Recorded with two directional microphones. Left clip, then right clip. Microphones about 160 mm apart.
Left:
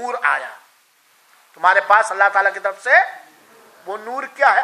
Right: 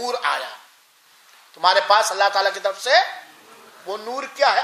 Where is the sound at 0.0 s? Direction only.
15° right (ahead or behind).